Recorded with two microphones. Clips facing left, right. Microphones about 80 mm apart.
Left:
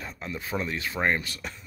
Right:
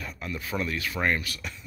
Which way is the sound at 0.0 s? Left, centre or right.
Left.